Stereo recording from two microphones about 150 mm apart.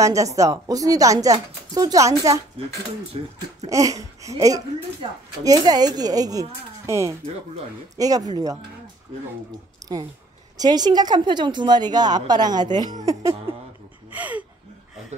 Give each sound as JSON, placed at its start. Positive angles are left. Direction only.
{"t": 0.0, "sound": "a woman's voice", "side_deg": -20}
{"t": 3.1, "sound": "a woman's voice", "side_deg": -40}
{"t": 3.6, "sound": "a woman's voice", "side_deg": -20}
{"t": 5.0, "sound": "a woman's voice", "side_deg": -35}
{"t": 5.4, "sound": "a woman's voice", "side_deg": -25}
{"t": 9.8, "sound": "a sound", "side_deg": -25}
{"t": 10.6, "sound": "a woman's voice", "side_deg": -25}
{"t": 14.1, "sound": "gasp", "side_deg": -10}